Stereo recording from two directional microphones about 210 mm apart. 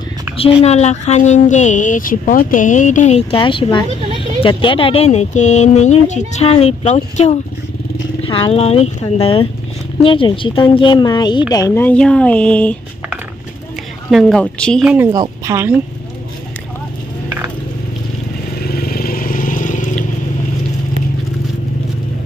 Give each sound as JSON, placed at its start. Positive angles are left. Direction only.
{"t": 0.4, "sound": "a woman's voice", "side_deg": 25}
{"t": 11.7, "sound": "speech", "side_deg": 5}
{"t": 14.1, "sound": "speech", "side_deg": 5}
{"t": 15.0, "sound": "speech", "side_deg": -15}
{"t": 18.7, "sound": "vehicle", "side_deg": 45}